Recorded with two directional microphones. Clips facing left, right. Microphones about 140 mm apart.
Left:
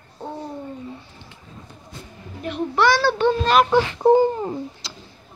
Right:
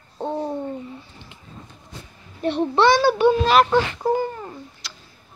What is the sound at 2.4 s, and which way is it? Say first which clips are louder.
Speech: right 2 dB; 30° right (ahead or behind).